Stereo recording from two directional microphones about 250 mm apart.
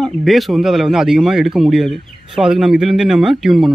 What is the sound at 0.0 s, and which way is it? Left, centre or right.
Speech, centre.